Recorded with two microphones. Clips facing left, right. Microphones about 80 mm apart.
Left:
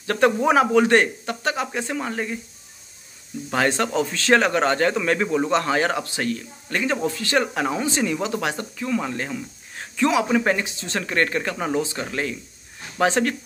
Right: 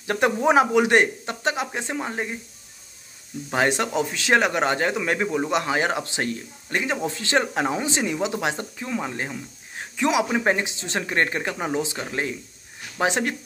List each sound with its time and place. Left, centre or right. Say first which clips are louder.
0.0 s speech: left 2 dB; centre
3.5 s a man's voice: left 1 dB; centre